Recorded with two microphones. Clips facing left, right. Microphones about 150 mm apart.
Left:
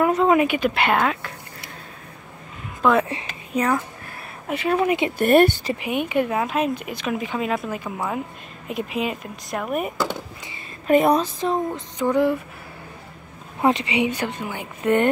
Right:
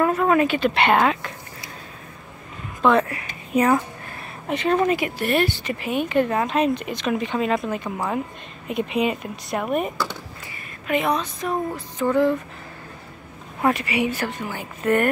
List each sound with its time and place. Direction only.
0.0 s speech: 20° left (ahead or behind); by 1.3 s centre (ahead or behind)
2.8 s speech: 5° left (ahead or behind)
3.5 s speech: 5° right (ahead or behind)
4.1 s a sound: 5° left (ahead or behind)
5.2 s speech: 50° left (ahead or behind)
5.8 s speech: 15° left (ahead or behind)
10.9 s speech: 40° left (ahead or behind)
11.3 s speech: 25° left (ahead or behind)
13.6 s speech: 20° left (ahead or behind)